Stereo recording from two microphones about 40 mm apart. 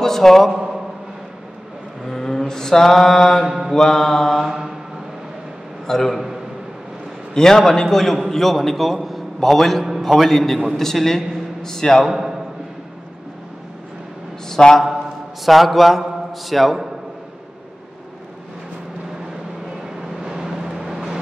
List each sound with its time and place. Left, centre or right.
0.0 s a man's voice: centre
2.0 s mantra: centre
3.4 s mantra: centre
3.7 s a man's voice: centre
5.9 s a man's voice: centre
7.3 s a man's voice: centre
12.1 s a man's voice: centre
14.5 s a man's voice: centre
15.4 s a man's voice: centre
20.0 s vehicle: centre